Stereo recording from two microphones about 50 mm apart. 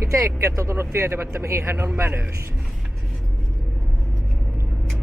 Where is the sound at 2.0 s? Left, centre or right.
Right.